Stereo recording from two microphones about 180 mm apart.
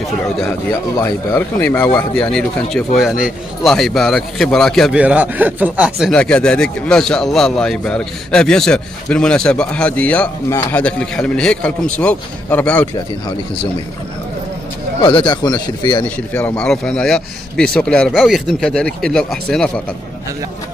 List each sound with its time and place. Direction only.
0.9 s speech: 15° left (ahead or behind)
15.0 s speech: 25° left (ahead or behind)
16.3 s speech: 5° left (ahead or behind)